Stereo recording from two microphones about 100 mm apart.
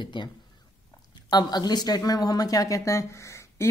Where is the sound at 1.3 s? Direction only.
45° left (ahead or behind); by 3.6 s 30° left (ahead or behind).